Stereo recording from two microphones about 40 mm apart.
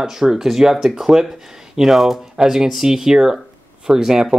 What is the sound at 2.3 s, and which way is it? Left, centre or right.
Speech, centre.